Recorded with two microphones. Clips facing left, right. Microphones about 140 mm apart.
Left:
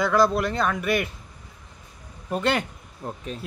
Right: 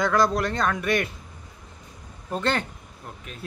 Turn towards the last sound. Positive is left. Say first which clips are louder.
# left 8 dB
turn(degrees=35)  # may be behind; listen again after turning